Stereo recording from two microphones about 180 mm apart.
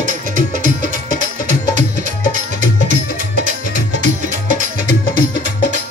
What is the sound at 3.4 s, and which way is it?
Music, 45° right (ahead or behind).